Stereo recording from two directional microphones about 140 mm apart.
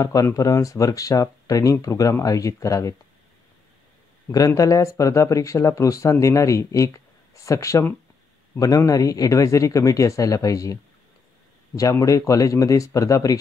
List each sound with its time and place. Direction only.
0.0 s speech: 25° left (ahead or behind)
4.3 s speech: 25° left (ahead or behind)